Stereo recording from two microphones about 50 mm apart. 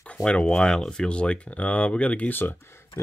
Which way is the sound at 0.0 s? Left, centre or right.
Left.